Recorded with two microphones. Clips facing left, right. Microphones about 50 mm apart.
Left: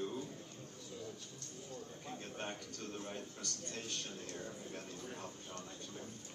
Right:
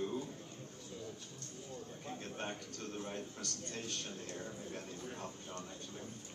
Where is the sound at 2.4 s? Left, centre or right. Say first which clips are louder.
Right 1 dB; right.